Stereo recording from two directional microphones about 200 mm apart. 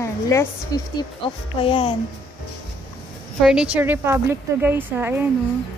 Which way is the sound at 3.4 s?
5° right (ahead or behind).